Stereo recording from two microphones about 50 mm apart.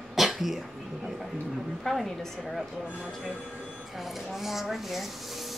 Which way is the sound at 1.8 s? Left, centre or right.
Centre.